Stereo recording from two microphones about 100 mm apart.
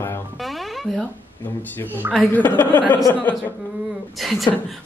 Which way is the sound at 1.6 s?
20° left (ahead or behind).